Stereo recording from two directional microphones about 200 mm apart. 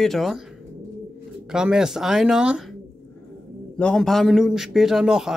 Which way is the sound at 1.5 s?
5° right (ahead or behind).